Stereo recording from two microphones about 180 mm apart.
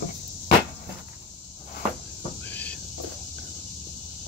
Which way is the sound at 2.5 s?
10° left (ahead or behind).